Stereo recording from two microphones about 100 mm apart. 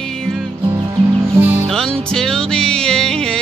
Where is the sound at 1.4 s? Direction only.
20° right (ahead or behind).